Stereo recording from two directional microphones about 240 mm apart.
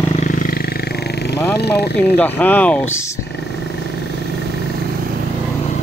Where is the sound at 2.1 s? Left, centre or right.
Centre.